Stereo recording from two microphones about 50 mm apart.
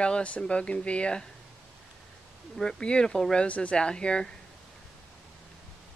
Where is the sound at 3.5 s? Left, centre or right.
Left.